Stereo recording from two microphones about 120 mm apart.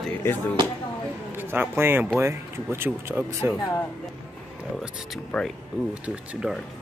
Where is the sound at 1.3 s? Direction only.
15° right (ahead or behind).